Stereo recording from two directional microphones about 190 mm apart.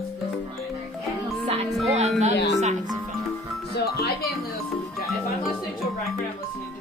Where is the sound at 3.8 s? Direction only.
55° left (ahead or behind).